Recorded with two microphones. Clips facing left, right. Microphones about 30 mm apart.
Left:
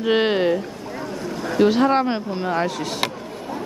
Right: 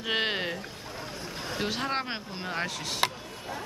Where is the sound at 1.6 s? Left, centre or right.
Centre.